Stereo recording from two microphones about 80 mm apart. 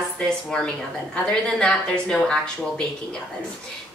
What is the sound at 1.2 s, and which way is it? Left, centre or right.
A woman's voice, centre.